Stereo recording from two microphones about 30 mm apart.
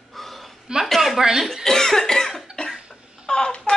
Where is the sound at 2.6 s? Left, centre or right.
Left.